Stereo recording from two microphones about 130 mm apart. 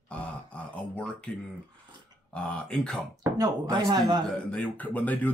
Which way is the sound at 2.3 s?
10° left (ahead or behind).